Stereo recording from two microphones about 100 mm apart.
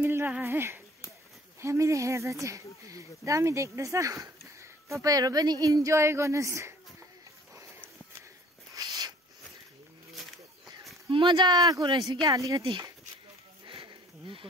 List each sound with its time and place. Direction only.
0.0 s speech: 20° right (ahead or behind)
8.7 s a sound: 40° right (ahead or behind)
11.1 s speech: 55° right (ahead or behind); by 12.6 s 35° right (ahead or behind)
13.7 s sniff: 55° right (ahead or behind)